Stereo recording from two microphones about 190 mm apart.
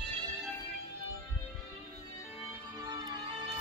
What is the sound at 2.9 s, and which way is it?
Music, 20° right (ahead or behind).